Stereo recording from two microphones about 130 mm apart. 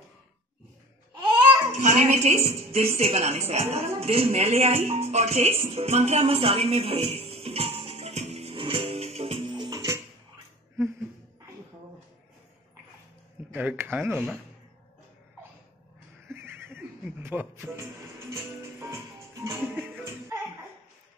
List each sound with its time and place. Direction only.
1.8 s a woman's voice: 60° right (ahead or behind)
8.5 s music: 40° right (ahead or behind); by 10.0 s 25° right (ahead or behind)
13.5 s speech: 15° right (ahead or behind)
16.3 s a sound: 20° right (ahead or behind)
17.2 s speech: 15° right (ahead or behind)
18.3 s music: 20° right (ahead or behind)